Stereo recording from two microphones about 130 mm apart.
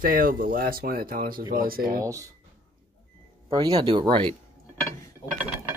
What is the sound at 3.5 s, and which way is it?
Speech, 30° right (ahead or behind).